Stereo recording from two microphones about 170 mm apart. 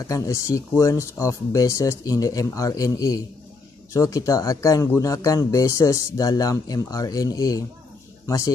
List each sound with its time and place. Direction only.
0.0 s speech: 20° left (ahead or behind)